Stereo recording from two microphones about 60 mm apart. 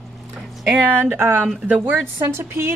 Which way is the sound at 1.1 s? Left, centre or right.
Right.